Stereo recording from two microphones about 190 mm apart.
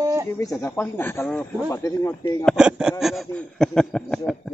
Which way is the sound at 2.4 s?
5° right (ahead or behind).